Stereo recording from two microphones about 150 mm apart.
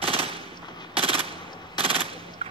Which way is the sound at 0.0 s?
40° right (ahead or behind).